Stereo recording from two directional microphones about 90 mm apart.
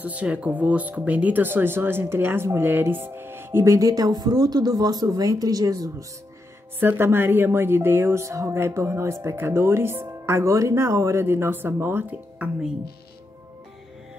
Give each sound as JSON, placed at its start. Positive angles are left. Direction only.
{"t": 0.0, "sound": "speech", "side_deg": -15}
{"t": 6.8, "sound": "speech", "side_deg": -25}